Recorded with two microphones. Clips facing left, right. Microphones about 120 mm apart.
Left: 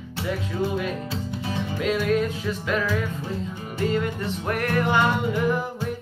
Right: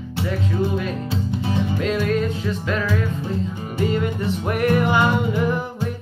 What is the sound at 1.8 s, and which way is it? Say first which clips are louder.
Music: left 1 dB; 5° left (ahead or behind).